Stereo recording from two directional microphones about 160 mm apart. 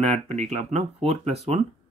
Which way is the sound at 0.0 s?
40° right (ahead or behind).